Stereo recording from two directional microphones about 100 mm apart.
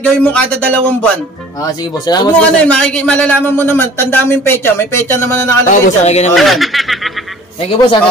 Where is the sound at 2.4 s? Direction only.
10° left (ahead or behind).